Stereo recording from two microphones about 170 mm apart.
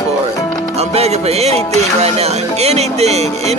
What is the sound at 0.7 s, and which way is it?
Music, 40° right (ahead or behind).